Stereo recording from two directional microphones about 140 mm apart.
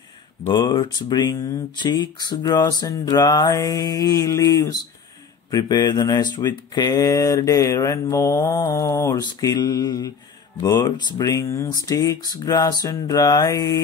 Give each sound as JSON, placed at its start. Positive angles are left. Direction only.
{"t": 0.5, "sound": "speech", "side_deg": 30}